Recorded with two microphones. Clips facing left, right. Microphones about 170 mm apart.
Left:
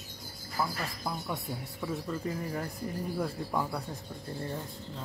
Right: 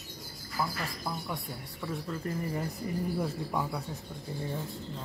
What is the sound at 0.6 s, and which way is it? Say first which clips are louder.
Speech: left 1 dB; 15° left (ahead or behind).